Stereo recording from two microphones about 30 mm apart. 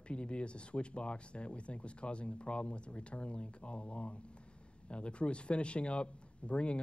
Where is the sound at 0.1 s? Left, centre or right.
Left.